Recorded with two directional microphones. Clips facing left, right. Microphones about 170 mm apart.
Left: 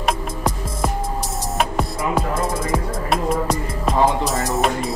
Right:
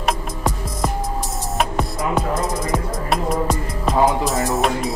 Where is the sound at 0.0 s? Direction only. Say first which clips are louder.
Even; centre (ahead or behind).